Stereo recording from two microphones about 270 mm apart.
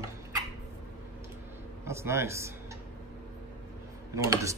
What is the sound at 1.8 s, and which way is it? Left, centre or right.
Speech, centre.